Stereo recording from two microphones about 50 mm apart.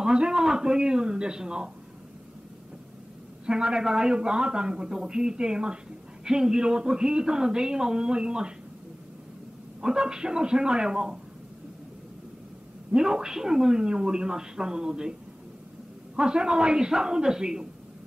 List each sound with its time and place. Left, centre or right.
0.0 s a man's voice: centre
3.4 s a man's voice: centre
9.8 s a man's voice: centre
12.9 s a man's voice: centre
16.2 s a man's voice: centre